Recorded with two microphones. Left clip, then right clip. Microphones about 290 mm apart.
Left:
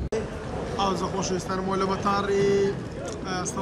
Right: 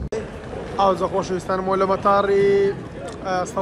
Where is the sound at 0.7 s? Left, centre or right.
Centre.